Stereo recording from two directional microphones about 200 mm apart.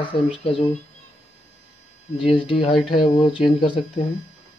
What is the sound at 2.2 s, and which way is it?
Speech, 25° left (ahead or behind).